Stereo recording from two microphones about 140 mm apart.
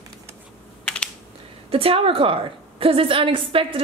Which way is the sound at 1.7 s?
40° right (ahead or behind).